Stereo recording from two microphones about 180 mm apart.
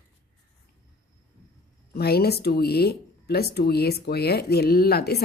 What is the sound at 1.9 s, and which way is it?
Speech, 60° left (ahead or behind).